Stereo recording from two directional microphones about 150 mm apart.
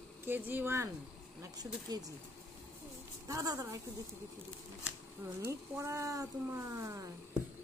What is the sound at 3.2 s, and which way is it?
Speech, 25° right (ahead or behind).